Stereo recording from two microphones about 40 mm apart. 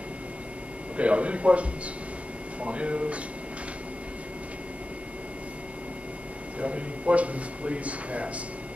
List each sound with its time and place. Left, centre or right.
0.9 s speech: right
6.6 s speech: right